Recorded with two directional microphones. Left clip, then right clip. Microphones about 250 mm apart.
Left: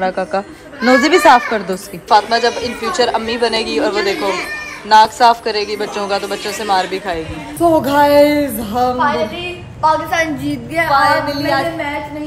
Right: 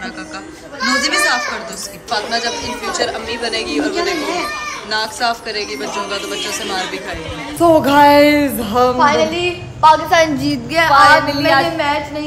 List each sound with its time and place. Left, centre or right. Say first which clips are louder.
0.0 s a child's voice: left 10 dB; centre
2.0 s a woman's voice: left 7 dB; centre
8.9 s a woman's voice: right 3 dB; right
10.8 s a woman's voice: right 3 dB; centre